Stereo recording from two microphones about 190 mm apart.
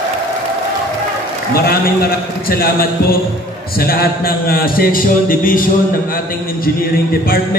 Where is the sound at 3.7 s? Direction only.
50° left (ahead or behind).